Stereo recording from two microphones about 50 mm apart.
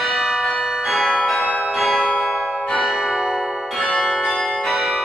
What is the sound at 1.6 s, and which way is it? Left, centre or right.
Bell, centre.